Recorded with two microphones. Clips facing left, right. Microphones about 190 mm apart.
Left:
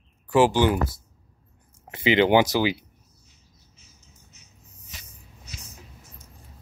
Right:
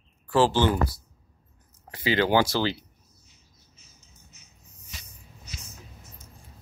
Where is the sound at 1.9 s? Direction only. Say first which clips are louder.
Left 4 dB; 20° left (ahead or behind).